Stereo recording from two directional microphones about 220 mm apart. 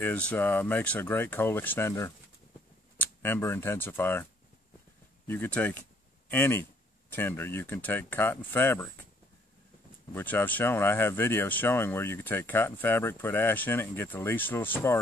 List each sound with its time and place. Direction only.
0.0 s speech: 5° left (ahead or behind)
10.1 s speech: 10° left (ahead or behind)